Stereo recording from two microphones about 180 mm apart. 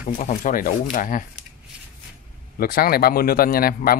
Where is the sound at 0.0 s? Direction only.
45° left (ahead or behind).